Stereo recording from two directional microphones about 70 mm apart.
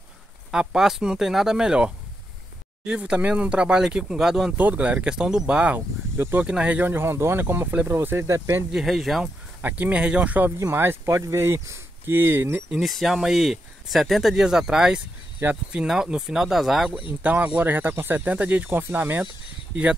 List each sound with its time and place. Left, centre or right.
0.5 s speech: centre
4.6 s speech: right
6.1 s speech: right
6.4 s speech: centre
6.8 s speech: right
8.7 s speech: centre
9.6 s speech: right
10.7 s speech: right
11.1 s speech: right
12.1 s speech: right
12.8 s speech: centre
16.9 s speech: right
19.7 s speech: centre